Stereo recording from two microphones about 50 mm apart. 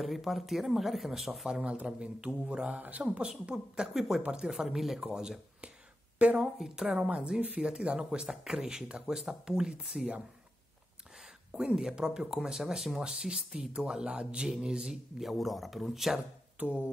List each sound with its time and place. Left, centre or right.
0.0 s speech: centre
1.5 s speech: right
6.1 s speech: right
6.6 s speech: centre
7.0 s speech: right
11.5 s speech: centre
15.2 s speech: centre
16.6 s speech: right